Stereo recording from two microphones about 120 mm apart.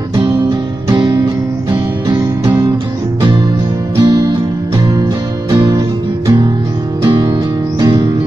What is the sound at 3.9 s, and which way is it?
Music, 35° right (ahead or behind).